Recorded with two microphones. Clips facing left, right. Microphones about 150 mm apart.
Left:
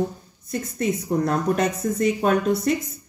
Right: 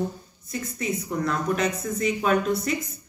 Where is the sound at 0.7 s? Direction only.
40° left (ahead or behind).